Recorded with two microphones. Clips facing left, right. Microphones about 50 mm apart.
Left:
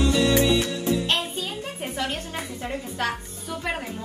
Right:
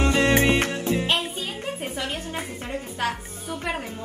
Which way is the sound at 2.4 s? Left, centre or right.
Right.